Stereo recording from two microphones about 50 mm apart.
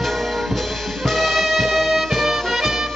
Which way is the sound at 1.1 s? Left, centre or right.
Centre.